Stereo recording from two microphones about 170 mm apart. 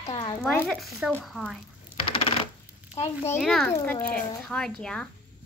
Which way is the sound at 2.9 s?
40° left (ahead or behind).